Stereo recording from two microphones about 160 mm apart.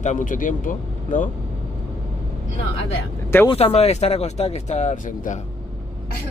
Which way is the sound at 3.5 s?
40° left (ahead or behind).